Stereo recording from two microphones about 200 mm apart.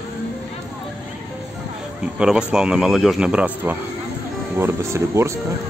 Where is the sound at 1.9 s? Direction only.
5° right (ahead or behind).